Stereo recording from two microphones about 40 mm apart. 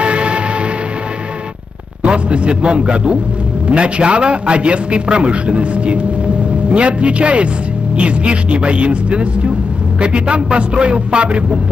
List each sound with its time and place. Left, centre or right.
0.0 s music: right
2.0 s a man's voice: right